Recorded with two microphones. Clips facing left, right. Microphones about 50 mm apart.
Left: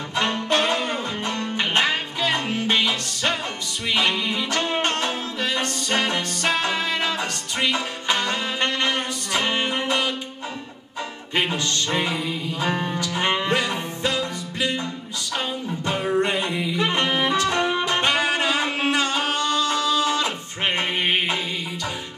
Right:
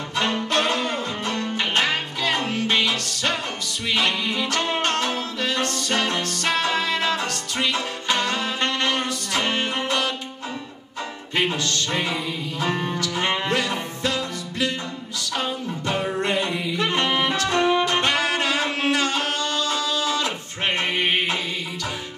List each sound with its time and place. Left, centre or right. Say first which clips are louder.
0.1 s music: left 1 dB; centre
11.4 s music: even; left
12.0 s music: left 1 dB; centre
13.0 s music: left 2 dB; left
16.2 s a sound: left 1 dB; left
16.7 s saxophone: even; left
17.1 s music: left 1 dB; centre
17.4 s music: right 2 dB; left